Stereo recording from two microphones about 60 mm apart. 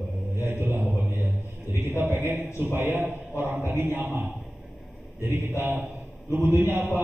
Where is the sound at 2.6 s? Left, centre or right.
Right.